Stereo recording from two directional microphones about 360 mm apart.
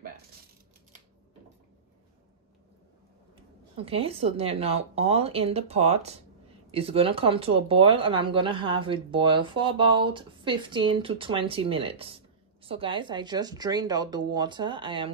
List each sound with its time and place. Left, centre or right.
3.7 s speech: centre